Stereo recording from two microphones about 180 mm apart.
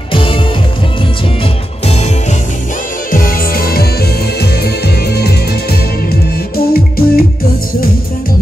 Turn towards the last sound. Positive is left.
turn(degrees=55)  # may be behind; listen again after turning